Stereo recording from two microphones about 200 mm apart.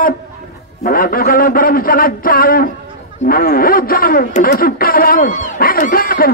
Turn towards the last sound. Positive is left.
turn(degrees=45)  # may be behind; listen again after turning